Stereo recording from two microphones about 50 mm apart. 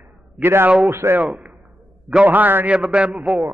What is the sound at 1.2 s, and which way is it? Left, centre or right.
Speech, right.